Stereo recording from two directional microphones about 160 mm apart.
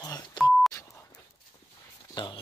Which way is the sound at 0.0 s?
25° left (ahead or behind).